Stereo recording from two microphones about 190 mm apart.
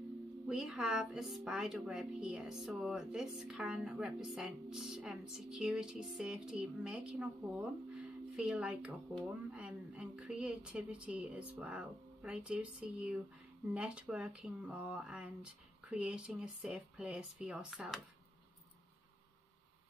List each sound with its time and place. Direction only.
0.5 s a woman's voice: 5° right (ahead or behind)